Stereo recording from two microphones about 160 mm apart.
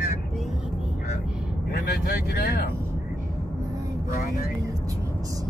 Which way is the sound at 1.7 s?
80° left.